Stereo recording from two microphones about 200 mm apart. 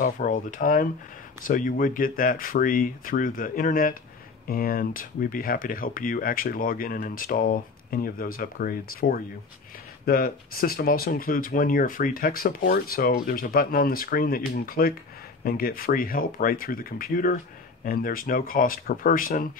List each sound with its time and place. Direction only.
0.0 s speech: 40° left (ahead or behind)